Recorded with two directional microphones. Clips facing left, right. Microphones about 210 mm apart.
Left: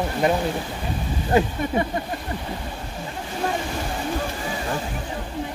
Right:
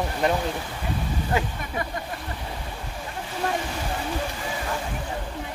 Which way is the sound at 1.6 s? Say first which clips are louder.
Left 9 dB; 30° left (ahead or behind).